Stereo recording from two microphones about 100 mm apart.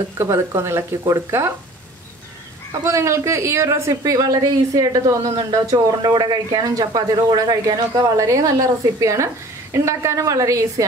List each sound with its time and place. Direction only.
0.2 s speech: 25° right (ahead or behind)
2.8 s a woman's voice: 30° right (ahead or behind)